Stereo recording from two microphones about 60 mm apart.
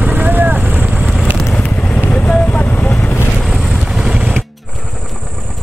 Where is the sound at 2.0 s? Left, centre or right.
Centre.